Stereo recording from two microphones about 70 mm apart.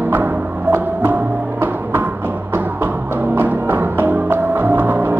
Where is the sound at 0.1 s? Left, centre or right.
Right.